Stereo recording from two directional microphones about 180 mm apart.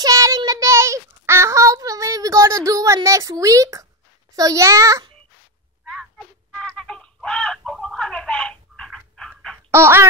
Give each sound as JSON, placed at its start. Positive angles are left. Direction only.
{"t": 0.0, "sound": "child singing", "side_deg": -20}
{"t": 4.4, "sound": "a child's voice", "side_deg": -20}
{"t": 6.6, "sound": "bird", "side_deg": 5}
{"t": 9.7, "sound": "quack", "side_deg": -15}